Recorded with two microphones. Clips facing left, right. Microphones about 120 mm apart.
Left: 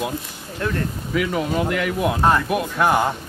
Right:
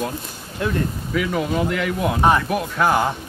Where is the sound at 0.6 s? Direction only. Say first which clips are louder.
Right 1 dB; 15° right (ahead or behind).